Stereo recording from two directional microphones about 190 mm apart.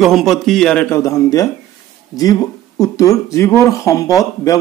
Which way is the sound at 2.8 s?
15° left (ahead or behind).